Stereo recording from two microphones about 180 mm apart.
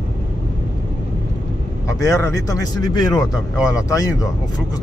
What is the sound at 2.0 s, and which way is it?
Speech, 20° left (ahead or behind).